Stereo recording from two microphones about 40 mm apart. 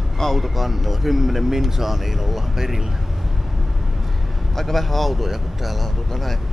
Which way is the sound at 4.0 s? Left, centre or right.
Centre.